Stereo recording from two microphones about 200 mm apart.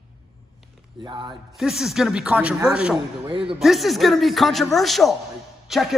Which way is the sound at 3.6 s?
Centre (ahead or behind).